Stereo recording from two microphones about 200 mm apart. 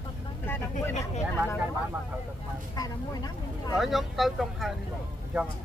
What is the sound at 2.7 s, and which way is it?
Speech, 20° left (ahead or behind).